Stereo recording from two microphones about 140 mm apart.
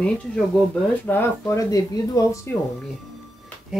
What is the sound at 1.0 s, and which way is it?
Speech, 15° left (ahead or behind).